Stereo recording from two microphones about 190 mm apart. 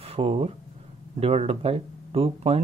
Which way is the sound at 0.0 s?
30° right (ahead or behind).